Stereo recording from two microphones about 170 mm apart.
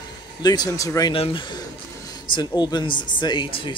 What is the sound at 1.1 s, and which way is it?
Speech, 30° left (ahead or behind).